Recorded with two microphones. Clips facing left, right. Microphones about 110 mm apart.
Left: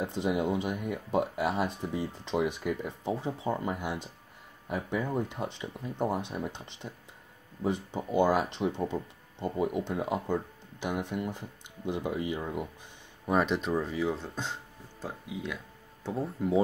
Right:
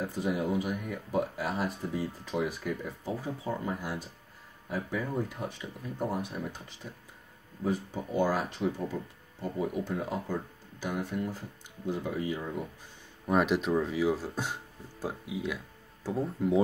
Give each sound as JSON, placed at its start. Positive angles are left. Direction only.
{"t": 0.0, "sound": "speech", "side_deg": 25}
{"t": 13.3, "sound": "speech", "side_deg": 0}